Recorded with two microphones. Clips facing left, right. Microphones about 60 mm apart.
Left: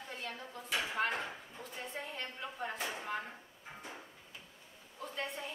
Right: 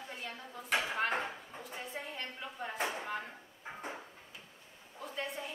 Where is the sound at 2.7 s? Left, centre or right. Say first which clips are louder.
Right 4 dB; right.